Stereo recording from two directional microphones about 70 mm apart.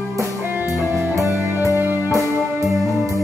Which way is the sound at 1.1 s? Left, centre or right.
Right.